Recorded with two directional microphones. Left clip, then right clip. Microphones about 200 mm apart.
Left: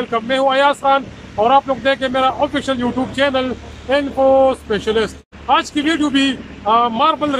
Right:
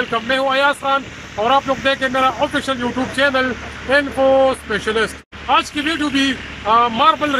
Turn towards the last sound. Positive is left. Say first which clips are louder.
# right 1 dB
turn(degrees=0)  # may be behind; listen again after turning